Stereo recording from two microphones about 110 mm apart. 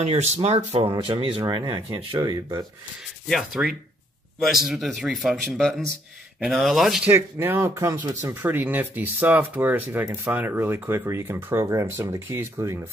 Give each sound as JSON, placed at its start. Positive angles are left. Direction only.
{"t": 0.0, "sound": "speech", "side_deg": -90}
{"t": 0.9, "sound": "speech", "side_deg": -50}
{"t": 1.4, "sound": "speech", "side_deg": -35}
{"t": 1.7, "sound": "speech", "side_deg": -55}
{"t": 2.1, "sound": "speech", "side_deg": -40}
{"t": 3.3, "sound": "speech", "side_deg": 0}
{"t": 7.1, "sound": "speech", "side_deg": -20}